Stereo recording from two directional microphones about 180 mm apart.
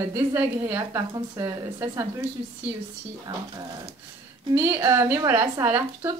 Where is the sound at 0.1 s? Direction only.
10° right (ahead or behind).